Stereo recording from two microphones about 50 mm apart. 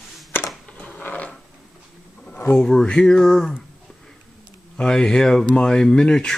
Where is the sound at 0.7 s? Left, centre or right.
Left.